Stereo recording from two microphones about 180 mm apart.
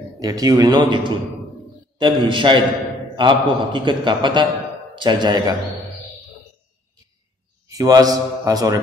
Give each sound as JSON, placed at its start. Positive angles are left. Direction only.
{"t": 0.2, "sound": "a man's voice", "side_deg": -20}
{"t": 7.6, "sound": "a man's voice", "side_deg": -20}